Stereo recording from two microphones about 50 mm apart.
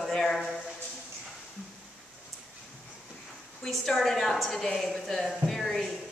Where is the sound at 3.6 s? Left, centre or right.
Centre.